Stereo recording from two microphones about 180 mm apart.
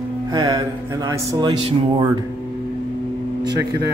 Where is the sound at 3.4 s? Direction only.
20° right (ahead or behind).